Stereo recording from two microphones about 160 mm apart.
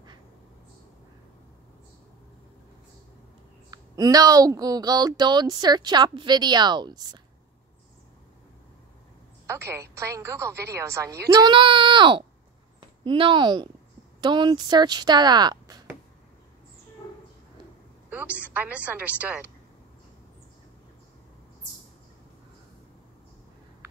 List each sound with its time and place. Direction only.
3.7 s speech: 25° right (ahead or behind)
9.5 s a woman's voice: 15° right (ahead or behind)
11.3 s speech: 30° right (ahead or behind)
18.1 s a sound: 10° right (ahead or behind)
18.5 s a woman's voice: 10° right (ahead or behind)